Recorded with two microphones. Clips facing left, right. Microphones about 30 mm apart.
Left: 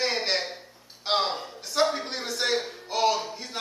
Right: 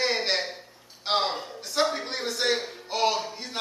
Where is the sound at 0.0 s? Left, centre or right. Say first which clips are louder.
Right 1 dB; centre.